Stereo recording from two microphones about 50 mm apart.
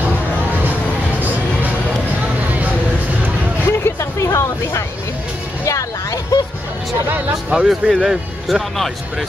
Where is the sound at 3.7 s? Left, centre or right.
Left.